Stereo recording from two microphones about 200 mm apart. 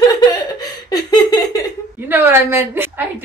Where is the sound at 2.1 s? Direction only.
10° right (ahead or behind).